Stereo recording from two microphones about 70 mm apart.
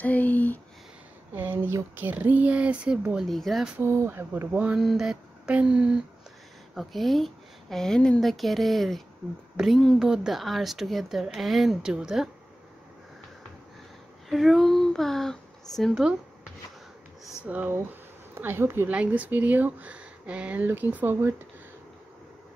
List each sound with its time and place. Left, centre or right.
0.0 s speech: left
1.3 s speech: right; by 3.3 s centre
3.3 s speech: centre
3.8 s speech: right
4.7 s speech: centre
5.5 s speech: centre
6.7 s speech: centre
9.9 s speech: centre
14.3 s speech: centre
15.9 s speech: centre
17.4 s speech: right
18.3 s speech: right
18.9 s speech: centre